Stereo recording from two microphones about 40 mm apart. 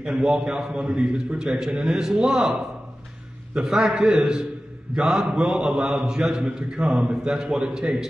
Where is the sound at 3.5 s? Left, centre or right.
Centre.